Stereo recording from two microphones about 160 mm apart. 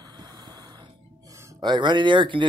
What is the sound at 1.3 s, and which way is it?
Speech, 20° right (ahead or behind).